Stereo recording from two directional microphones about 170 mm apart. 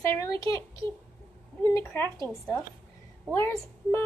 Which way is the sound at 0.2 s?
15° left (ahead or behind).